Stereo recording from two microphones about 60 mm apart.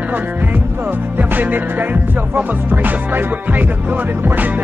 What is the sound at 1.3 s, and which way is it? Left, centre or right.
Music, right.